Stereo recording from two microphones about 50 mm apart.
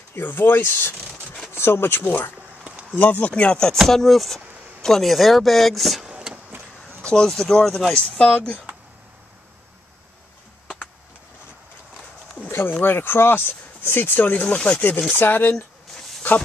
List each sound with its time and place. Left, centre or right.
0.1 s speech: left
3.0 s speech: left
3.7 s speech: centre
6.0 s vehicle: centre
7.0 s a sound: centre
7.2 s speech: centre
7.9 s speech: left
12.4 s a sound: left
12.8 s speech: left
14.3 s speech: left
15.1 s speech: left
15.5 s a sound: centre
16.2 s a sound: left